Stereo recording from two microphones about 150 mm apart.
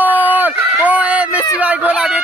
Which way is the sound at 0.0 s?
10° right (ahead or behind).